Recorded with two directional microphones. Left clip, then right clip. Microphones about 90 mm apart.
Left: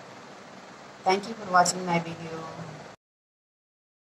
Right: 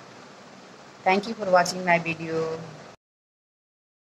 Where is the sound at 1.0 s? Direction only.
30° left (ahead or behind).